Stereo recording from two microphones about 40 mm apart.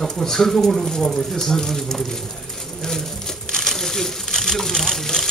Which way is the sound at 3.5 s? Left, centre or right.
Centre.